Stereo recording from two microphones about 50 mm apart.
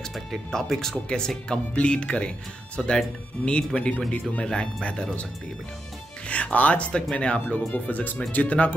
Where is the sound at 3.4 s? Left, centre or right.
Left.